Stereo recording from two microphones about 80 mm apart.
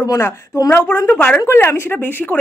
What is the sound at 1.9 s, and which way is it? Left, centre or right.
Speech, left.